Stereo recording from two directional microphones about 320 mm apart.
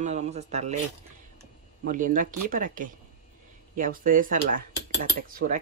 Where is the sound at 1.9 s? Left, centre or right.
Right.